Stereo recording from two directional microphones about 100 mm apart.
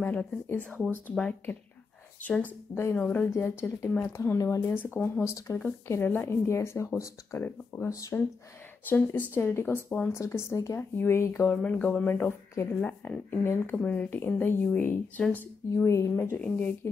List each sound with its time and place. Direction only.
0.0 s speech: 15° left (ahead or behind)
2.7 s speech: 25° left (ahead or behind)
3.3 s speech: 25° left (ahead or behind)
4.7 s speech: 20° left (ahead or behind)
7.9 s speech: 30° left (ahead or behind)
8.8 s speech: 20° left (ahead or behind)
11.5 s speech: 15° left (ahead or behind)
15.7 s speech: 30° left (ahead or behind)